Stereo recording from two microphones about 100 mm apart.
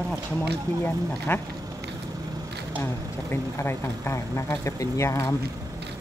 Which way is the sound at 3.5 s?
25° left (ahead or behind).